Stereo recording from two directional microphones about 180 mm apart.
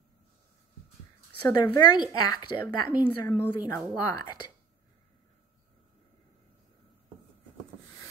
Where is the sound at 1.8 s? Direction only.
25° left (ahead or behind).